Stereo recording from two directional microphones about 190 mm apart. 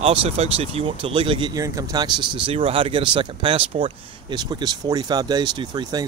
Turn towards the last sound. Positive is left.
turn(degrees=-20)  # may be behind; listen again after turning